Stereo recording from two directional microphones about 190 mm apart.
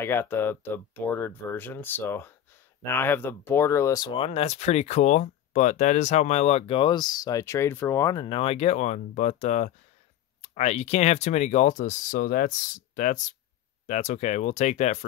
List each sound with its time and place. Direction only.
0.0 s speech: 10° left (ahead or behind)
4.3 s speech: 35° left (ahead or behind)